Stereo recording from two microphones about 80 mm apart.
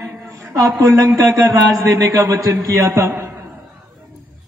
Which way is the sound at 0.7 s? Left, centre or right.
Right.